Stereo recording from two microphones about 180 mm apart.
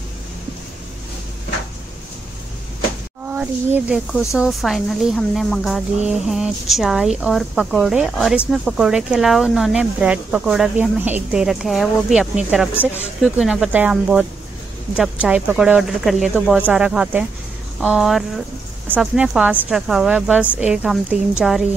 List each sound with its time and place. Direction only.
3.3 s speech: 10° right (ahead or behind)